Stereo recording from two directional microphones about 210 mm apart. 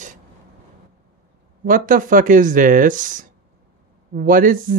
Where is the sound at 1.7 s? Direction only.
40° right (ahead or behind).